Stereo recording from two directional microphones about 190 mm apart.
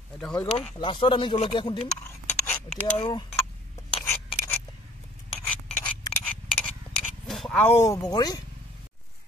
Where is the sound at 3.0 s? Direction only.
20° left (ahead or behind).